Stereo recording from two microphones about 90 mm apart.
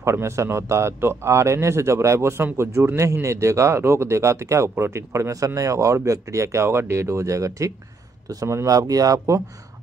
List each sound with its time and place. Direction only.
0.0 s speech: 30° right (ahead or behind)